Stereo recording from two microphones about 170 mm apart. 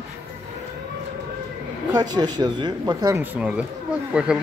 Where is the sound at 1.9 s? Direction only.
25° right (ahead or behind).